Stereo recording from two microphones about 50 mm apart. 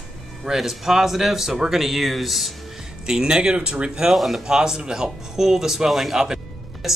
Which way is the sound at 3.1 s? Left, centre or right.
Centre.